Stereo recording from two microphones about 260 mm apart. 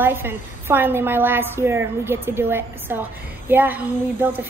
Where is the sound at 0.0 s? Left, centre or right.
Centre.